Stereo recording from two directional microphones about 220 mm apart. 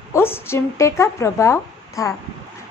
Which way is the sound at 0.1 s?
10° left (ahead or behind).